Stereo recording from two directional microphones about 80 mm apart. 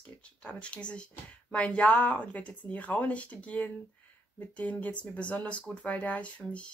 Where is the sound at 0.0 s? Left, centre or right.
Centre.